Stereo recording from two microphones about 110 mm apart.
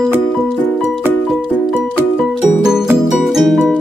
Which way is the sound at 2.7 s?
5° right (ahead or behind).